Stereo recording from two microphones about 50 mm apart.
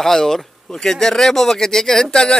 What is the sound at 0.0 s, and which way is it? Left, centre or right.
Speech, centre.